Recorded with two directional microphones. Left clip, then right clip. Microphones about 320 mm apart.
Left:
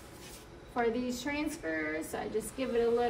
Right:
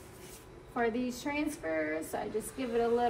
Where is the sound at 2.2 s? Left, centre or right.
Centre.